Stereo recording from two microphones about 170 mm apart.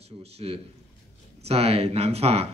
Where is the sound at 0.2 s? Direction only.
35° right (ahead or behind).